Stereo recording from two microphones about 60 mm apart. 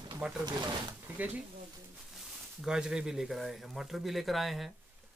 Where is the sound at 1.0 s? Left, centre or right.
Right.